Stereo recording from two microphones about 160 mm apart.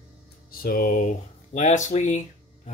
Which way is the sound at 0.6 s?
65° left (ahead or behind).